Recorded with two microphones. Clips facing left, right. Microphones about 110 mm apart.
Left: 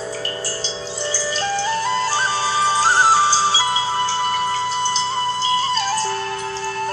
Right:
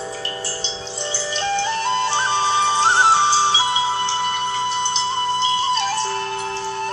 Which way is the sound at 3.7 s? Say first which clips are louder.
Even; 40° left (ahead or behind).